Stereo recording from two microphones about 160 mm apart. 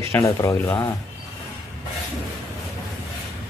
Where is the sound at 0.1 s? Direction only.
20° left (ahead or behind).